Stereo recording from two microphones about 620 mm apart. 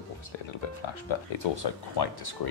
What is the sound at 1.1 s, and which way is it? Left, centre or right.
Speech, left.